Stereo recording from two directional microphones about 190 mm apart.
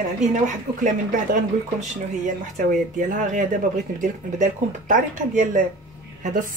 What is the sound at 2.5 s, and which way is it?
Speech, 40° right (ahead or behind).